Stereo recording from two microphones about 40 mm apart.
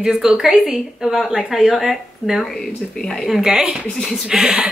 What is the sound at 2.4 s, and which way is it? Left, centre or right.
Speech, centre.